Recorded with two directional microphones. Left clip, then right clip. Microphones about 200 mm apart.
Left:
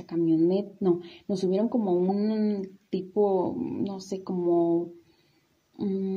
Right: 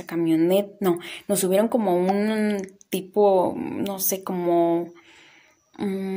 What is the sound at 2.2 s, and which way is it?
Mantra, 50° right (ahead or behind).